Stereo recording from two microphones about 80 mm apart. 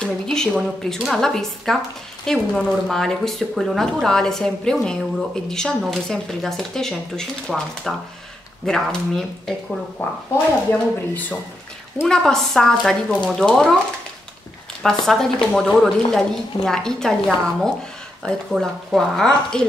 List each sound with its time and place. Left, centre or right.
0.0 s a sound: centre
0.8 s speech: centre
10.0 s speech: left
12.1 s speech: centre
14.8 s speech: centre